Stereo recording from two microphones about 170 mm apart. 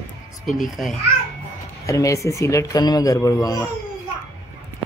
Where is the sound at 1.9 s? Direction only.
20° left (ahead or behind).